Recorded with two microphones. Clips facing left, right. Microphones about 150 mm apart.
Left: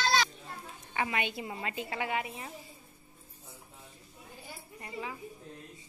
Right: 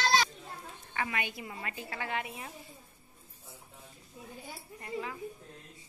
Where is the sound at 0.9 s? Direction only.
20° left (ahead or behind).